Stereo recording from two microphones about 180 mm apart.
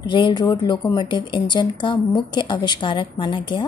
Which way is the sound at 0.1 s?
25° left (ahead or behind).